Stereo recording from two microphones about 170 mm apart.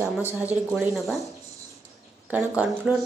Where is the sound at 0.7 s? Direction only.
Centre (ahead or behind).